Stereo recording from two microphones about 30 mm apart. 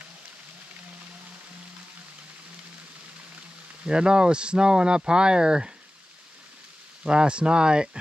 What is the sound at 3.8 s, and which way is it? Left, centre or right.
Speech, right.